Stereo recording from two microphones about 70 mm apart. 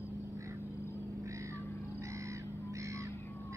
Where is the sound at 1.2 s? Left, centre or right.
Right.